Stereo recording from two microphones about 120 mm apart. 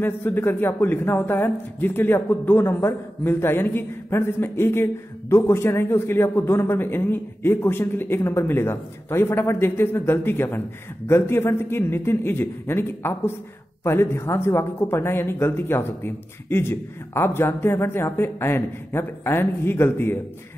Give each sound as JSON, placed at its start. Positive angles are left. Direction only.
{"t": 0.0, "sound": "speech", "side_deg": 15}